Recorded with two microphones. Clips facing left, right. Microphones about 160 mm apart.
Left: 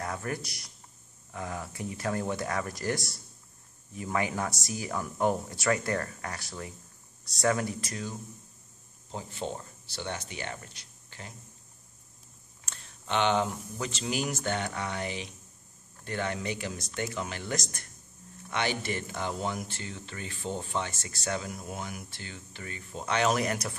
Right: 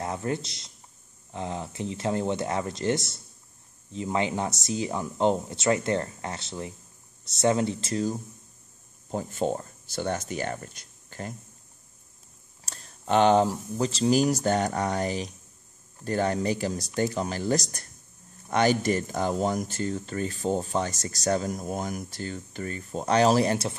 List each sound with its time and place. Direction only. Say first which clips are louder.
0.0 s speech: right 5 dB; 25° right (ahead or behind)
9.1 s speech: right 8 dB; 50° right (ahead or behind)
12.6 s speech: right 8 dB; 40° right (ahead or behind)